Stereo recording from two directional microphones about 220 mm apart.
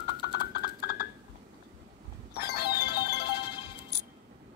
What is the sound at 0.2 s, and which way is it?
Clip-clop, 50° left (ahead or behind).